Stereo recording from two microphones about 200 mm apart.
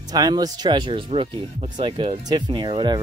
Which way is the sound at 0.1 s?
20° right (ahead or behind).